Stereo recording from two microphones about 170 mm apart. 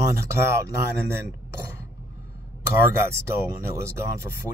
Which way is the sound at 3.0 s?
15° right (ahead or behind).